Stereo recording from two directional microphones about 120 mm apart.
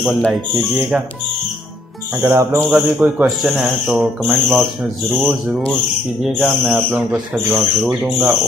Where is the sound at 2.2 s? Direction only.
25° right (ahead or behind).